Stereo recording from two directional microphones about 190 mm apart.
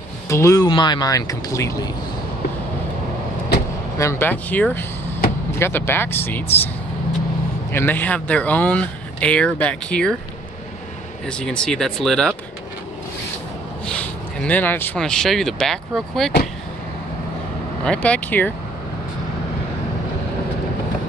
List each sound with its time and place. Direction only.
0.3 s speech: 15° left (ahead or behind)
4.0 s speech: 15° left (ahead or behind)
7.7 s speech: 10° left (ahead or behind)
11.2 s speech: 5° left (ahead or behind)
13.8 s speech: 5° left (ahead or behind)
17.8 s speech: 5° left (ahead or behind)